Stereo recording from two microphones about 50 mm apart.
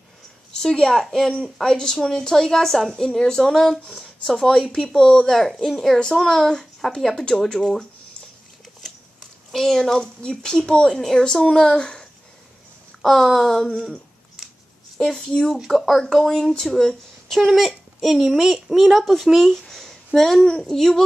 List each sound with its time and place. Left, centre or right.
0.5 s a woman's voice: centre
3.8 s a woman's voice: centre
5.2 s a woman's voice: centre
9.5 s a woman's voice: centre
10.9 s a woman's voice: centre
15.0 s a woman's voice: centre
15.5 s speech: centre